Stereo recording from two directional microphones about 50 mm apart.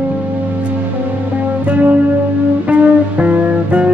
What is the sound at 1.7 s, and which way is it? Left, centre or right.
Music, right.